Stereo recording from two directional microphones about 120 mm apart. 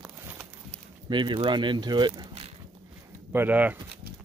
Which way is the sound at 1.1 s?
40° right (ahead or behind).